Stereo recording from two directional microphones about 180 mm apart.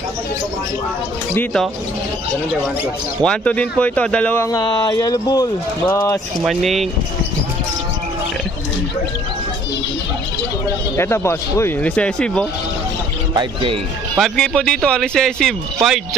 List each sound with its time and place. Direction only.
1.3 s speech: 5° left (ahead or behind)
3.3 s speech: 5° left (ahead or behind)
6.4 s speech: centre (ahead or behind)
11.0 s speech: 15° left (ahead or behind)
13.3 s speech: 25° right (ahead or behind)
14.1 s speech: 5° left (ahead or behind)